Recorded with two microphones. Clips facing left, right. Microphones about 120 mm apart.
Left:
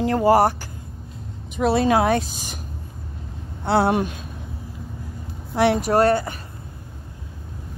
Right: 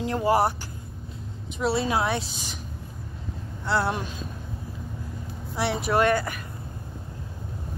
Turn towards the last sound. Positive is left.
turn(degrees=40)  # may be behind; listen again after turning